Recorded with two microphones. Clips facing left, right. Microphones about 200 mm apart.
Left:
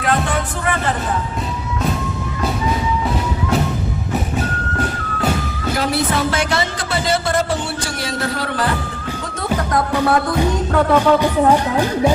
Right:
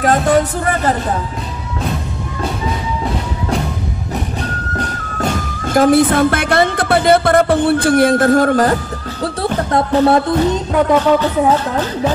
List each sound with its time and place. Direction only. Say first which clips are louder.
0.0 s music: right 7 dB; 40° right (ahead or behind)
5.2 s music: right 1 dB; 50° right (ahead or behind)
9.7 s music: right 5 dB; 25° right (ahead or behind)
11.0 s speech: right 1 dB; 10° left (ahead or behind)